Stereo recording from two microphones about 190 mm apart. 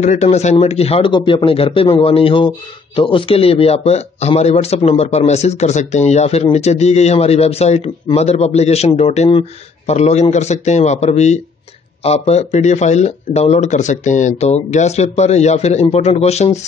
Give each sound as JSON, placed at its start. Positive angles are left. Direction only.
{"t": 0.0, "sound": "speech", "side_deg": 40}